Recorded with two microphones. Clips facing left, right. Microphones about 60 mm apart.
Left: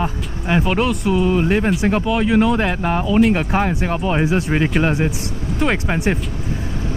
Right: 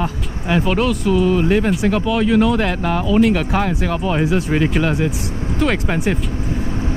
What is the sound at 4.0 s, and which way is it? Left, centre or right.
Speech, centre.